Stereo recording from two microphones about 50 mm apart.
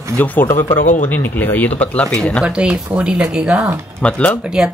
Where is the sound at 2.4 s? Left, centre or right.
Right.